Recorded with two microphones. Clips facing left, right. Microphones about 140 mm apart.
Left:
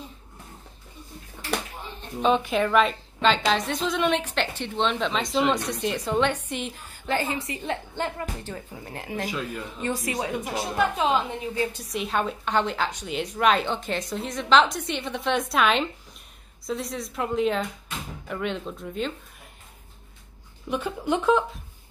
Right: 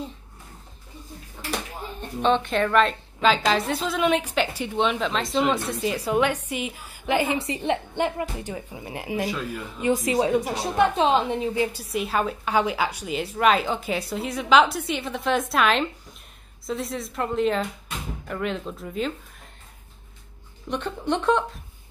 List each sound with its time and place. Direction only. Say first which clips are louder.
2.2 s a woman's voice: even; 5° left (ahead or behind)
10.1 s a woman's voice: right 6 dB; 35° right (ahead or behind)
11.6 s a woman's voice: right 2 dB; 5° right (ahead or behind)
20.7 s a woman's voice: even; 5° left (ahead or behind)